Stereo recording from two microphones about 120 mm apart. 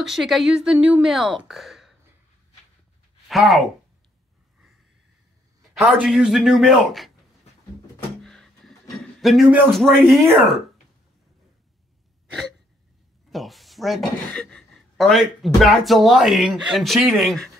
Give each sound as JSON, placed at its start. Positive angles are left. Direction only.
{"t": 0.0, "sound": "speech", "side_deg": 0}
{"t": 3.3, "sound": "speech", "side_deg": 0}
{"t": 5.9, "sound": "speech", "side_deg": -10}
{"t": 8.2, "sound": "a sound", "side_deg": 5}
{"t": 9.7, "sound": "speech", "side_deg": 0}
{"t": 13.3, "sound": "speech", "side_deg": 0}